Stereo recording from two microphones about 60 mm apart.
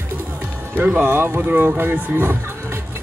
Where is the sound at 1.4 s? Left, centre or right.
Right.